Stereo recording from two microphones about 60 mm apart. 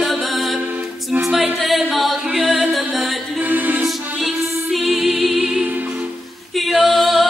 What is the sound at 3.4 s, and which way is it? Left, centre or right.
Music, right.